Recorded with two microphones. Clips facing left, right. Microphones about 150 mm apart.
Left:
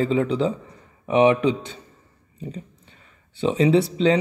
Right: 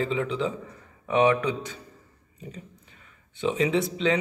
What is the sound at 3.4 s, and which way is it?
Speech, 35° left (ahead or behind).